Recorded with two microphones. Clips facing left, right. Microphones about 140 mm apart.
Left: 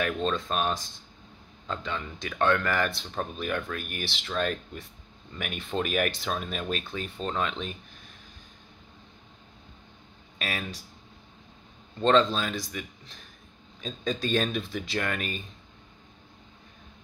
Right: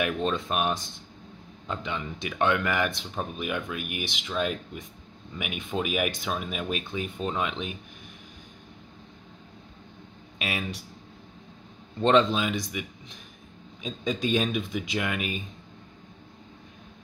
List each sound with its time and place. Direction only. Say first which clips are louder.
0.0 s speech: right 1 dB; 15° right (ahead or behind)
12.0 s speech: right 1 dB; 20° right (ahead or behind)